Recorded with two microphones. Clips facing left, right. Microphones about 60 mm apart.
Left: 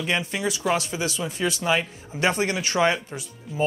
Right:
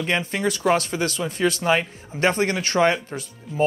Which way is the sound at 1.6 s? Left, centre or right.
Right.